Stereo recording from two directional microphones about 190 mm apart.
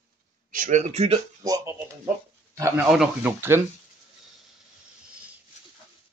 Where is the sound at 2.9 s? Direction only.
5° right (ahead or behind).